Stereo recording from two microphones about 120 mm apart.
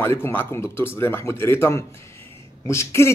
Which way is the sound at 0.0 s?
20° left (ahead or behind).